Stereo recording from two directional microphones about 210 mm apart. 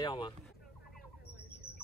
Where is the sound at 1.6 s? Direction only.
45° left (ahead or behind).